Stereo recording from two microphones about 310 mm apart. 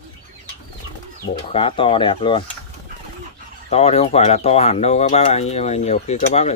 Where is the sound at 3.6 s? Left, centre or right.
Centre.